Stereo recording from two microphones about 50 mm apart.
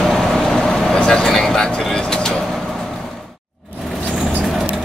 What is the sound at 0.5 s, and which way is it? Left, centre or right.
Vehicle, centre.